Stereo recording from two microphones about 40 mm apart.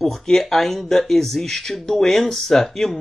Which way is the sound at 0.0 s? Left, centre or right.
Centre.